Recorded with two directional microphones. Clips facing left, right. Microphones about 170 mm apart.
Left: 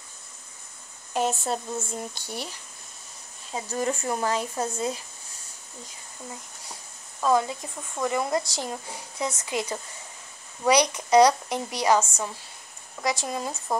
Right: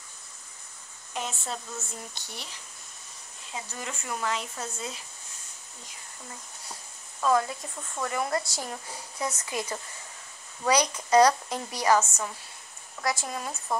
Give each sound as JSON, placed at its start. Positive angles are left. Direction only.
{"t": 1.1, "sound": "speech", "side_deg": 40}
{"t": 3.5, "sound": "speech", "side_deg": 35}
{"t": 7.2, "sound": "a woman's voice", "side_deg": 20}